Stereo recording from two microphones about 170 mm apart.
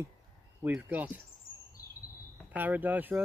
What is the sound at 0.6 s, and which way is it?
Speech, 10° right (ahead or behind).